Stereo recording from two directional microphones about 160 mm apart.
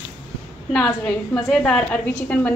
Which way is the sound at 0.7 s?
5° left (ahead or behind).